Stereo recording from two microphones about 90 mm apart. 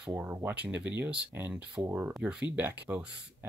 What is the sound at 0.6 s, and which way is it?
Speech, 15° right (ahead or behind).